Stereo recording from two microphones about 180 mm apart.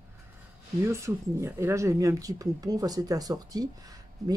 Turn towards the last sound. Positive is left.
turn(degrees=-20)  # may be behind; listen again after turning